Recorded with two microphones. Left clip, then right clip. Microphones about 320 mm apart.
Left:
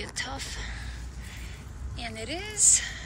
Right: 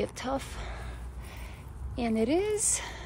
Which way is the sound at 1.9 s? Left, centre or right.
Centre.